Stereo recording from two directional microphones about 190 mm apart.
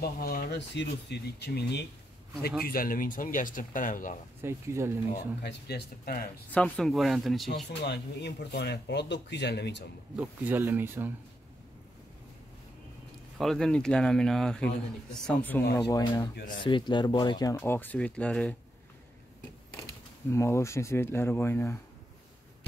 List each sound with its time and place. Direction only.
0.0 s speech: 50° left (ahead or behind)
2.6 s speech: 50° left (ahead or behind)
4.4 s speech: 15° right (ahead or behind)
5.4 s speech: 60° left (ahead or behind)
6.5 s speech: centre (ahead or behind)
7.8 s speech: 60° left (ahead or behind)
10.1 s speech: 10° right (ahead or behind)
13.4 s speech: centre (ahead or behind); by 16.3 s 20° left (ahead or behind)
16.3 s speech: 60° left (ahead or behind)
16.6 s speech: 25° left (ahead or behind)
17.6 s speech: 10° left (ahead or behind)
20.2 s speech: 15° left (ahead or behind)